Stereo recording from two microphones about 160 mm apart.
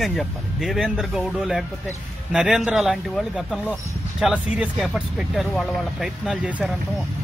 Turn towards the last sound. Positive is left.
turn(degrees=-5)  # may be behind; listen again after turning